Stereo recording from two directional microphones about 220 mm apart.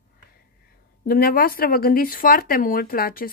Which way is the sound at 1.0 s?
45° left (ahead or behind).